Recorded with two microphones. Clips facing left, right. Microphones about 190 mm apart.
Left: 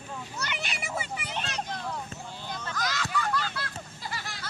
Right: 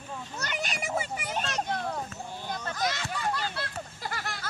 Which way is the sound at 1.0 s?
45° right (ahead or behind).